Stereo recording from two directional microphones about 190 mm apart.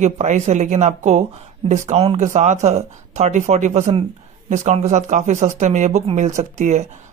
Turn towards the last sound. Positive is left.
turn(degrees=-40)  # may be behind; listen again after turning